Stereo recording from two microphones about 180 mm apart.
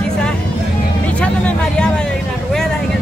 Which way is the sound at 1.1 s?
5° left (ahead or behind).